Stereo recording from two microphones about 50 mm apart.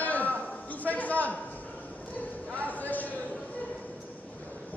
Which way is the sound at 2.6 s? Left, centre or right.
Left.